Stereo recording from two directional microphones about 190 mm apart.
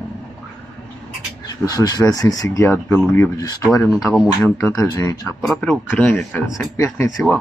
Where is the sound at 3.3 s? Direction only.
20° left (ahead or behind).